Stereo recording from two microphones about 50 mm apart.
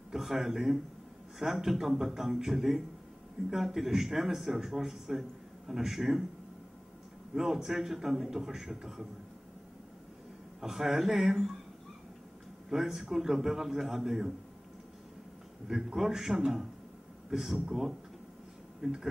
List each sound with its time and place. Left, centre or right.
0.1 s speech: centre
7.3 s speech: centre
10.6 s speech: centre
12.6 s speech: centre
15.6 s speech: centre